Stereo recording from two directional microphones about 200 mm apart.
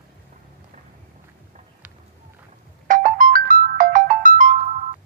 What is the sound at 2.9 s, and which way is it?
Ringtone, 40° right (ahead or behind).